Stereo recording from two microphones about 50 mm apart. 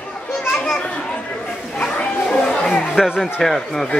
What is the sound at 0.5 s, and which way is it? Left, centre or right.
Speech, centre.